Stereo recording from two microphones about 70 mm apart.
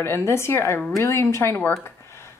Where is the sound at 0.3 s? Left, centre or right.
Left.